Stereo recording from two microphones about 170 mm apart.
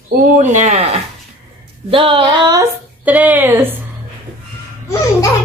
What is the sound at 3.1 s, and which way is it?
Speech, 10° right (ahead or behind).